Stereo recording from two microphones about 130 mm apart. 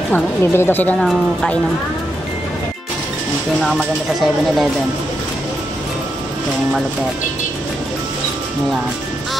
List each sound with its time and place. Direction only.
0.1 s speech: 20° left (ahead or behind)
0.9 s speech: centre (ahead or behind)
3.6 s speech: centre (ahead or behind)